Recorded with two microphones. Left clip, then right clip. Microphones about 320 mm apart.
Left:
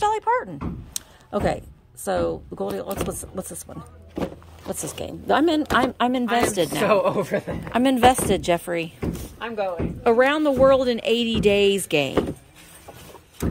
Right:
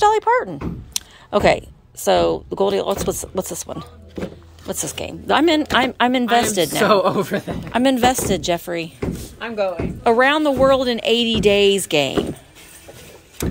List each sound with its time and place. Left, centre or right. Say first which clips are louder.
0.0 s a woman's voice: right 6 dB; centre
6.8 s speech: right 4 dB; centre
7.6 s a woman's voice: right 1 dB; centre
9.4 s speech: right 5 dB; right
10.0 s a woman's voice: right 3 dB; centre